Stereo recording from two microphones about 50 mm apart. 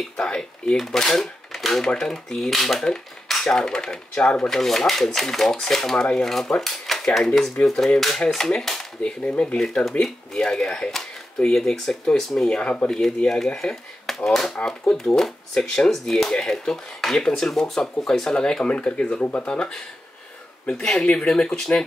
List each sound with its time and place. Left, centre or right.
0.2 s speech: centre
4.5 s speech: centre
6.6 s cutlery: centre
7.2 s speech: centre
9.0 s speech: centre
9.6 s speech: centre
12.4 s speech: centre
13.0 s speech: centre
17.2 s speech: centre
20.7 s speech: centre
21.0 s speech: left